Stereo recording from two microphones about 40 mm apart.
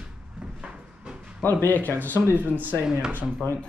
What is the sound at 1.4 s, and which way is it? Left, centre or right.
Speech, left.